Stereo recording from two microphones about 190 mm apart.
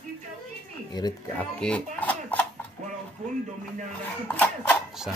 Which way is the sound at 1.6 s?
5° left (ahead or behind).